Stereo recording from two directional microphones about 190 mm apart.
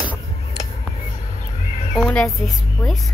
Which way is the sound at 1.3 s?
40° left (ahead or behind).